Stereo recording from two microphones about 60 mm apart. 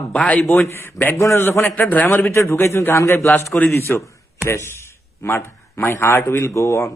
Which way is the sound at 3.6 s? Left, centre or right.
Left.